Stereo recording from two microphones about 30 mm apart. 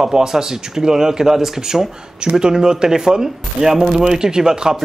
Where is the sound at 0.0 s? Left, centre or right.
Right.